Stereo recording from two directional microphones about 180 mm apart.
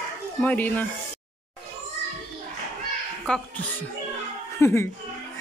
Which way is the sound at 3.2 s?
5° left (ahead or behind).